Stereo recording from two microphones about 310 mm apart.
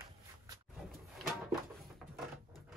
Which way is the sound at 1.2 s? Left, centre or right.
Centre.